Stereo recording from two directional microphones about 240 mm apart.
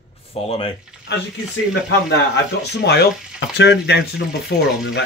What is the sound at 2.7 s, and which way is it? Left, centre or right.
Speech, left.